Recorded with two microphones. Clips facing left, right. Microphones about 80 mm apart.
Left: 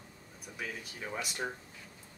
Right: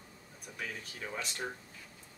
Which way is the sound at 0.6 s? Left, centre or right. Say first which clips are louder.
Left 1 dB; centre.